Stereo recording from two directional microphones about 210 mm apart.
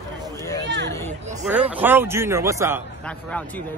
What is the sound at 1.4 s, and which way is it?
Speech, 5° right (ahead or behind).